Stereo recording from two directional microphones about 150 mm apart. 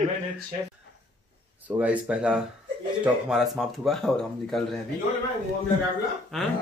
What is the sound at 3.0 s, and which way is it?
Speech, 5° right (ahead or behind).